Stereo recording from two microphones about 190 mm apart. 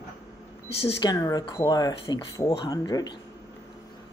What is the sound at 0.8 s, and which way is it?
Speech, 20° left (ahead or behind).